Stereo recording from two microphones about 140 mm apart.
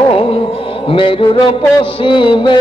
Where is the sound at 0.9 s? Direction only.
40° left (ahead or behind).